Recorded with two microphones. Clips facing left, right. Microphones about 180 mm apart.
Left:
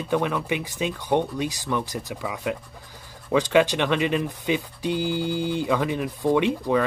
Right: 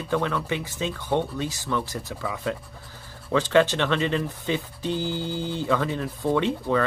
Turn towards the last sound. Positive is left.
turn(degrees=15)  # may be behind; listen again after turning